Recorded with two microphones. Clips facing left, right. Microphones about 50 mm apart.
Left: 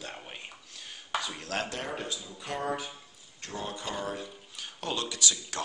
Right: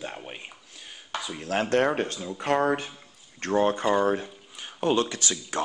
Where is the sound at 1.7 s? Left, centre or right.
Right.